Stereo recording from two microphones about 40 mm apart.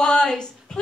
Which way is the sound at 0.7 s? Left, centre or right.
Centre.